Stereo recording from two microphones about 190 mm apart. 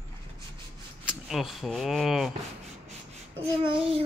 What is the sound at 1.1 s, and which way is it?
Speech, centre (ahead or behind).